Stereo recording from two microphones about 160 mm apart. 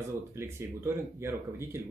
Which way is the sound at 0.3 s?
15° right (ahead or behind).